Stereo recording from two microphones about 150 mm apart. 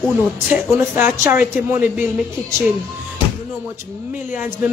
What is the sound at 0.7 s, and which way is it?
Speech, 15° right (ahead or behind).